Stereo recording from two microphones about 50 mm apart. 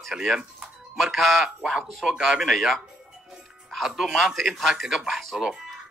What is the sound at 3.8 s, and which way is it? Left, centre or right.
Speech, centre.